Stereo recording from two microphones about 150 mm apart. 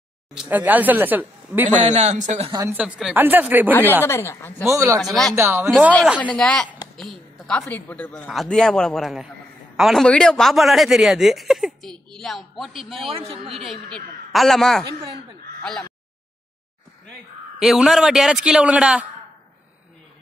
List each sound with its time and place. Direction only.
0.3 s speech: 10° right (ahead or behind)
1.8 s a man's voice: 50° right (ahead or behind)
2.5 s speech: 20° right (ahead or behind)
2.8 s speech: 5° right (ahead or behind)
4.0 s speech: 15° left (ahead or behind)
4.6 s speech: 20° right (ahead or behind)
5.0 s speech: centre (ahead or behind)
5.3 s speech: 15° right (ahead or behind)
6.1 s a man's voice: 10° left (ahead or behind)
13.1 s a man's voice: 35° right (ahead or behind)
13.5 s speech: centre (ahead or behind)
15.6 s crow: 5° left (ahead or behind)
17.6 s speech: centre (ahead or behind)